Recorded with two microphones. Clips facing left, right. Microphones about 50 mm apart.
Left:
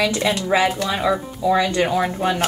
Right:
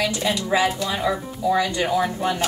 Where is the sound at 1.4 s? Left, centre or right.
Left.